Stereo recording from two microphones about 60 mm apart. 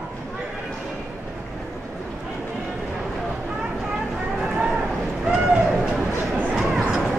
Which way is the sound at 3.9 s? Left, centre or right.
Centre.